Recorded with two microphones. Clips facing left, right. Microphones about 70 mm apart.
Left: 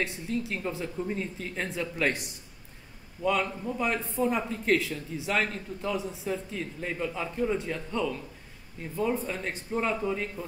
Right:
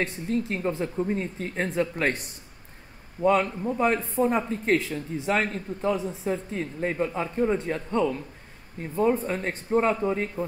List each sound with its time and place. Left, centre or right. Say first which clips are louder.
0.0 s a man's voice: right 4 dB; right